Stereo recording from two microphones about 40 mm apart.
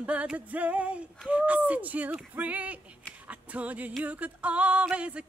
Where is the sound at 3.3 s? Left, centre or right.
Right.